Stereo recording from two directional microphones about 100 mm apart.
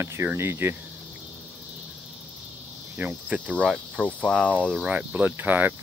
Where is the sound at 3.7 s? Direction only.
10° left (ahead or behind).